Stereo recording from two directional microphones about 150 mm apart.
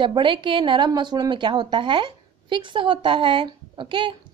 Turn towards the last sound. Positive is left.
turn(degrees=-35)  # may be behind; listen again after turning